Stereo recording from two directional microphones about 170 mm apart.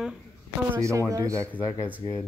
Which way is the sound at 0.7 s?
15° right (ahead or behind).